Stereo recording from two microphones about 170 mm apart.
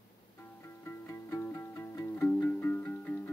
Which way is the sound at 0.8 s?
15° left (ahead or behind).